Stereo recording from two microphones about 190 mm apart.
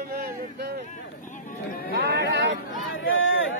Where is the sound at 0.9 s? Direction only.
40° left (ahead or behind).